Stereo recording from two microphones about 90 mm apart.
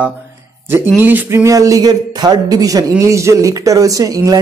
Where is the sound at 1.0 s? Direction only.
20° right (ahead or behind).